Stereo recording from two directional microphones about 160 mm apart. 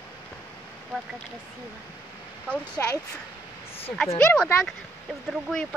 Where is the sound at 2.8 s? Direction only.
15° left (ahead or behind).